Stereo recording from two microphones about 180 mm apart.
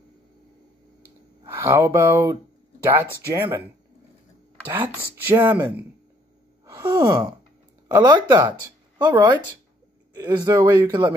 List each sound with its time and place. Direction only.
1.4 s speech: 15° right (ahead or behind)
4.7 s speech: 10° right (ahead or behind)
6.6 s gasp: 15° right (ahead or behind)
7.9 s speech: 20° right (ahead or behind)